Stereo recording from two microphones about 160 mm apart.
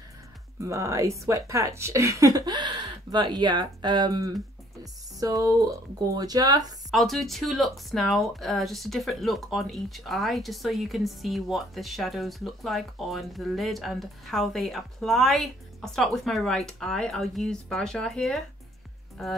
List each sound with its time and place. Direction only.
0.6 s speech: 20° right (ahead or behind)
6.9 s speech: centre (ahead or behind)